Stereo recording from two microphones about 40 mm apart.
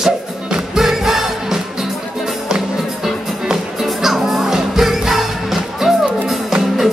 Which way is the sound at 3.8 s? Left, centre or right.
Centre.